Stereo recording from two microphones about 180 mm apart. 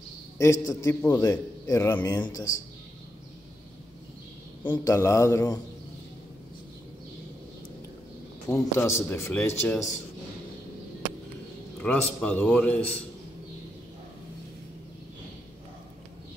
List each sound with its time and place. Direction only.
0.4 s a man's voice: 15° left (ahead or behind)
4.6 s a man's voice: 15° left (ahead or behind)
8.5 s a man's voice: 10° left (ahead or behind)
11.8 s a man's voice: 5° left (ahead or behind)